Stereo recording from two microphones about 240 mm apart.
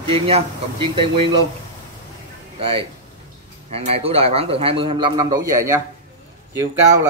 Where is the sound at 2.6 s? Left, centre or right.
Right.